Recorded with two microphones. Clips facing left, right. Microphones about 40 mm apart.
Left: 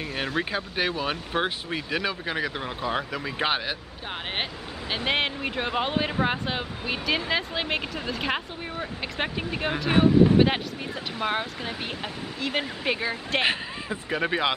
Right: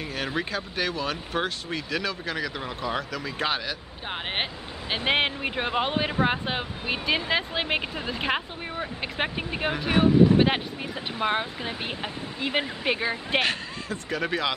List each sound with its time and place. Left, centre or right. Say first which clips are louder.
0.4 s speech: left 2 dB; centre
4.9 s speech: right 2 dB; centre
13.4 s speech: left 1 dB; centre